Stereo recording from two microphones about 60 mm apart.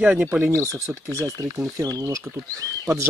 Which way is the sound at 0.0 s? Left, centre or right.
Centre.